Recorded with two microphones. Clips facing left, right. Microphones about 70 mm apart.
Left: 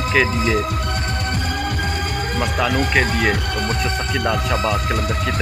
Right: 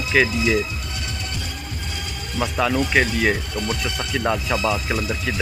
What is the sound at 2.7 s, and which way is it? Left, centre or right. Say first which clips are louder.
Speech: left 1 dB; left.